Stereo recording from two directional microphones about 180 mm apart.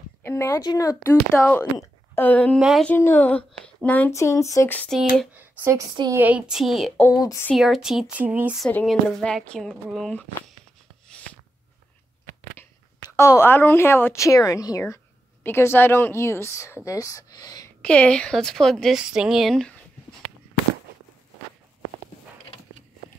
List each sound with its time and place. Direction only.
0.2 s speech: 15° left (ahead or behind)
1.1 s speech: 10° left (ahead or behind)
5.4 s a sound: 10° right (ahead or behind)
6.1 s a woman's voice: 10° right (ahead or behind)
7.2 s speech: 20° left (ahead or behind)
7.4 s a woman's voice: centre (ahead or behind)
8.6 s a woman's voice: 5° left (ahead or behind)
11.1 s a sound: 5° left (ahead or behind)
13.0 s speech: 20° left (ahead or behind)
17.8 s a woman's voice: 5° left (ahead or behind)